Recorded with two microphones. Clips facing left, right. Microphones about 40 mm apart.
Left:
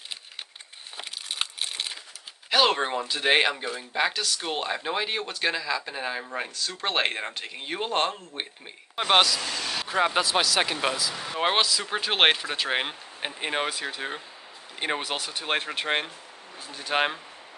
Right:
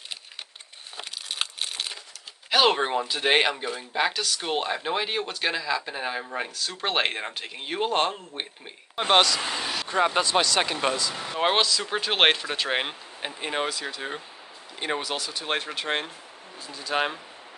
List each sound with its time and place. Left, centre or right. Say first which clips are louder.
0.9 s crumpling: right 1 dB; centre
2.5 s speech: right 1 dB; centre
9.4 s speech: right 2 dB; right
9.8 s speech: even; centre
13.4 s speech: even; centre
15.0 s speech: right 1 dB; left